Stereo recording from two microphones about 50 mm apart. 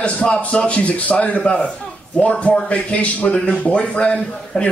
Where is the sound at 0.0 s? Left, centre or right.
Left.